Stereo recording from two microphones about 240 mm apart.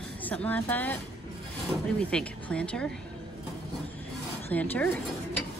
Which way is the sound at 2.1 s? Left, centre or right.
Centre.